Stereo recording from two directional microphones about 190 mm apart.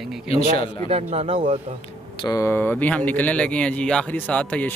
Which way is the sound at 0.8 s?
35° right (ahead or behind).